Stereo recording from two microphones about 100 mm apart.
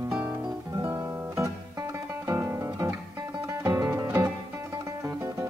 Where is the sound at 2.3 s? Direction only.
25° right (ahead or behind).